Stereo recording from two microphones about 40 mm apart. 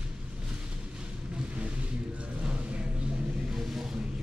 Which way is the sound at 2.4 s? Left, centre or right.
Right.